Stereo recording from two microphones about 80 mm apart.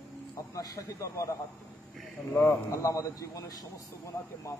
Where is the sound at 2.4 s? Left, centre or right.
Left.